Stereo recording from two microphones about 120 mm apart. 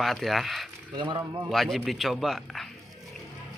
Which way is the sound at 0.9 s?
40° right (ahead or behind).